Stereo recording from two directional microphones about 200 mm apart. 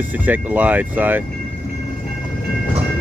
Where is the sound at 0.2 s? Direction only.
10° right (ahead or behind).